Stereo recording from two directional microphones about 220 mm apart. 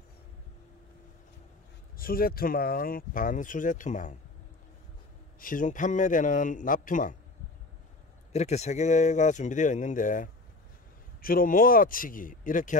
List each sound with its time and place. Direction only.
2.0 s speech: 40° left (ahead or behind)
5.4 s speech: 35° left (ahead or behind)
8.3 s speech: 30° left (ahead or behind)